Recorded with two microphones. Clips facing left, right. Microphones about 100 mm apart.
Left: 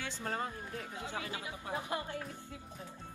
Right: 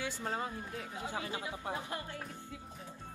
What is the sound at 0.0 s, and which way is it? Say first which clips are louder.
Speech: right 1 dB; 20° right (ahead or behind).